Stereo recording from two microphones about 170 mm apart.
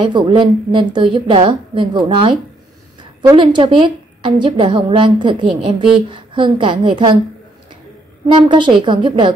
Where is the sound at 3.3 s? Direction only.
30° right (ahead or behind).